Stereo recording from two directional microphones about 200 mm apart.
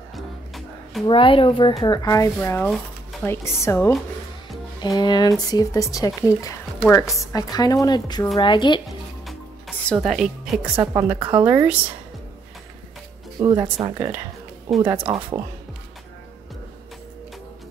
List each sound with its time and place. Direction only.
0.1 s music: centre (ahead or behind)
1.0 s speech: 25° left (ahead or behind)
9.2 s music: centre (ahead or behind)
10.8 s speech: 15° right (ahead or behind)
11.4 s speech: 10° right (ahead or behind)
13.4 s speech: 20° right (ahead or behind)